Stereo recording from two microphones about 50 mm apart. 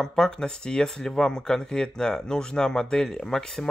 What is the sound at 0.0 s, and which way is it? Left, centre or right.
Speech, centre.